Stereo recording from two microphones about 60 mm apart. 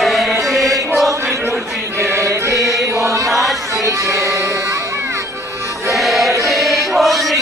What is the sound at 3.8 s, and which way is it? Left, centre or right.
Music, right.